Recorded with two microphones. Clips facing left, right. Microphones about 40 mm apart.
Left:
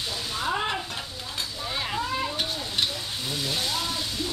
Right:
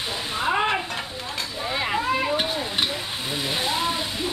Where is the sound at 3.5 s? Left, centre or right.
Right.